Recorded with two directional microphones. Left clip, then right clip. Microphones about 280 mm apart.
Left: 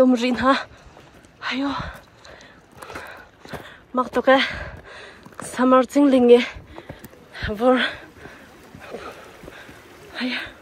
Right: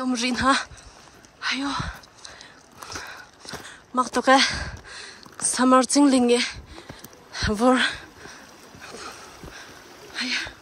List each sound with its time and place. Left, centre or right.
0.0 s speech: centre
1.4 s a sound: centre
5.5 s speech: centre
7.3 s a sound: right
8.8 s dog: centre
10.1 s speech: centre